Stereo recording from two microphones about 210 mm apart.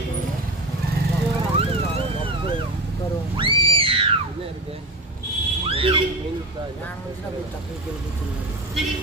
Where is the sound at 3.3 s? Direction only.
25° right (ahead or behind).